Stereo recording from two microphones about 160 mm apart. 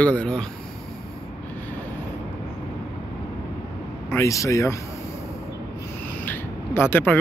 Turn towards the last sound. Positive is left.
turn(degrees=15)  # may be behind; listen again after turning